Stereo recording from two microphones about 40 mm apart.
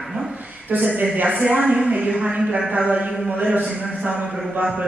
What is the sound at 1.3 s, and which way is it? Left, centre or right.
Speech, right.